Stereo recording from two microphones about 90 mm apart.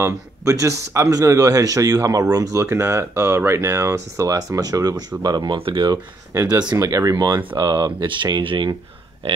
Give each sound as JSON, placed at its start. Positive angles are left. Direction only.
{"t": 0.0, "sound": "a man's voice", "side_deg": -35}
{"t": 2.5, "sound": "a man's voice", "side_deg": -30}
{"t": 5.6, "sound": "speech", "side_deg": -70}
{"t": 6.6, "sound": "speech", "side_deg": -45}